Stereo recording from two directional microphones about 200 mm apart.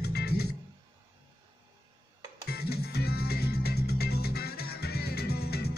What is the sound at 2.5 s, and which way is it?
Music, 50° left (ahead or behind).